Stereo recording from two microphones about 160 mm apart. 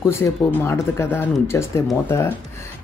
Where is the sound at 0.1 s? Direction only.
15° left (ahead or behind).